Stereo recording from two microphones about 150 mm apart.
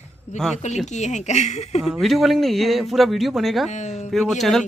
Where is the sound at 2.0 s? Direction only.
Centre (ahead or behind).